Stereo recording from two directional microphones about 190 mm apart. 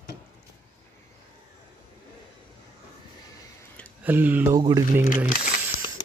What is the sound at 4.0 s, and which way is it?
Speech, 10° right (ahead or behind).